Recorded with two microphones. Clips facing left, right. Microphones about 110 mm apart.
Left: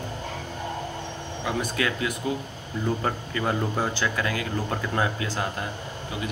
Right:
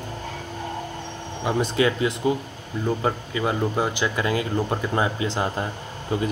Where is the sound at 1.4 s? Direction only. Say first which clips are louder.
Right 6 dB; 25° right (ahead or behind).